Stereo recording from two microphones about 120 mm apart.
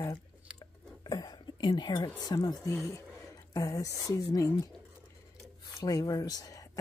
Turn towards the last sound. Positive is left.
turn(degrees=30)  # may be behind; listen again after turning